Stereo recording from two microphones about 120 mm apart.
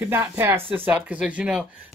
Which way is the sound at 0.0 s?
20° right (ahead or behind).